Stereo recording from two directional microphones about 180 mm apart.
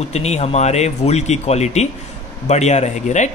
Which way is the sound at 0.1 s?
35° left (ahead or behind).